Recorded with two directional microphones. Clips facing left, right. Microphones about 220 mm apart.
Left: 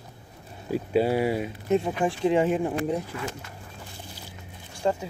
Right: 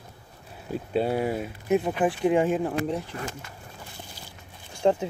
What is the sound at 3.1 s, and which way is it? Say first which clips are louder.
Speech: left 1 dB; 40° right (ahead or behind).